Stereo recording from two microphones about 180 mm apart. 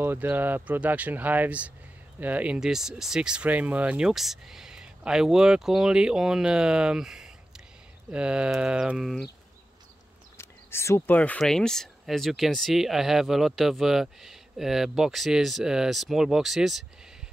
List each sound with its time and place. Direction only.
0.0 s speech: 10° right (ahead or behind)
10.3 s speech: 15° left (ahead or behind); by 16.8 s centre (ahead or behind)